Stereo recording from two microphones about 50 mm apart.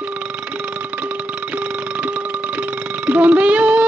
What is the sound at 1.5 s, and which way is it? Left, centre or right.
Music, right.